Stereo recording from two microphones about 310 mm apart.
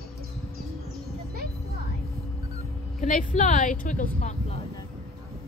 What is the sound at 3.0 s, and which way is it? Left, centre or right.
A woman's voice, left.